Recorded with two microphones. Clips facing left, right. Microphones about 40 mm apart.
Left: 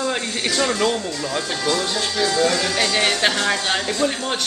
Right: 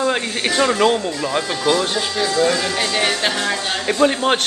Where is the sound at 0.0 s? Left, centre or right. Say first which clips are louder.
Right 4 dB; right.